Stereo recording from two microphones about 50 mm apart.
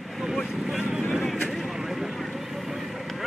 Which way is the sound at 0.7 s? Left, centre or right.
Centre.